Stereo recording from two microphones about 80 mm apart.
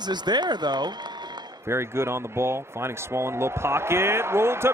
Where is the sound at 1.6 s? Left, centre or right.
Right.